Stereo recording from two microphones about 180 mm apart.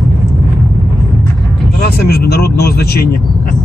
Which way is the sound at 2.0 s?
60° left (ahead or behind).